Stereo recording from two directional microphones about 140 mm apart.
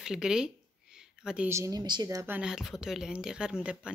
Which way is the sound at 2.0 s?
20° right (ahead or behind).